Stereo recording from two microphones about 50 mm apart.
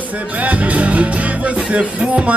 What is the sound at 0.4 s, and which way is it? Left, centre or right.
Music, right.